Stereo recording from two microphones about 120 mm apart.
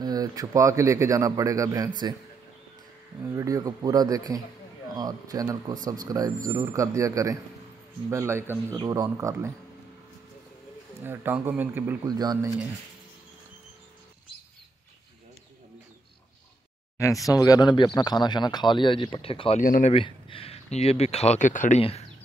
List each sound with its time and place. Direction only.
0.0 s a man's voice: 30° right (ahead or behind)
3.3 s a man's voice: 30° right (ahead or behind)
8.7 s speech: 35° right (ahead or behind)
9.1 s a man's voice: 25° right (ahead or behind)
11.0 s speech: 15° right (ahead or behind)
12.0 s speech: 35° right (ahead or behind)
17.3 s speech: 30° left (ahead or behind)
19.2 s speech: 50° left (ahead or behind); by 21.8 s 90° left